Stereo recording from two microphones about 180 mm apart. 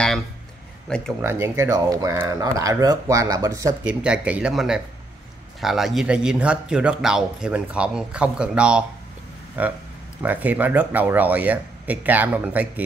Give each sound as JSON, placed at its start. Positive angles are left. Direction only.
{"t": 0.8, "sound": "a man's voice", "side_deg": 5}
{"t": 1.2, "sound": "speech", "side_deg": -15}
{"t": 3.8, "sound": "a man's voice", "side_deg": -5}